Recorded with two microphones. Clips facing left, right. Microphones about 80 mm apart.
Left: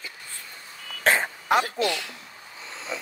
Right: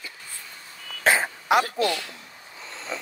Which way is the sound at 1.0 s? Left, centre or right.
Centre.